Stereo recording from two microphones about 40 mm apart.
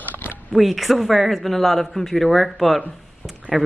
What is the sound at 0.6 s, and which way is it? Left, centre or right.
Speech, centre.